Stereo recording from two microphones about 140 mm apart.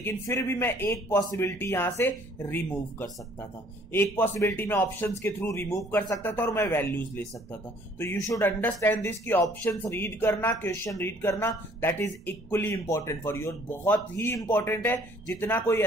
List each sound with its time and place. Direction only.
0.0 s speech: 20° left (ahead or behind)